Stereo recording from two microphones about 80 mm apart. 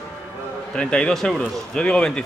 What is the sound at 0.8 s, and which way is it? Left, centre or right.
A man's voice, centre.